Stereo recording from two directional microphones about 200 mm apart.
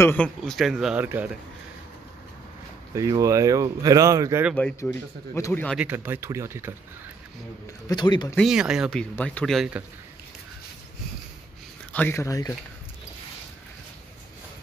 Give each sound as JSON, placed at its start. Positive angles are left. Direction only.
{"t": 0.0, "sound": "a man's voice", "side_deg": 10}
{"t": 2.9, "sound": "speech", "side_deg": -15}
{"t": 4.6, "sound": "speech", "side_deg": 5}
{"t": 5.8, "sound": "speech", "side_deg": -10}
{"t": 7.9, "sound": "speech", "side_deg": 20}
{"t": 8.4, "sound": "a man's voice", "side_deg": -5}
{"t": 11.9, "sound": "speech", "side_deg": 10}